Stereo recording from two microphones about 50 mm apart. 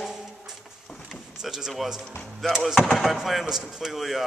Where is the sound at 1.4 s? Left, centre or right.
Centre.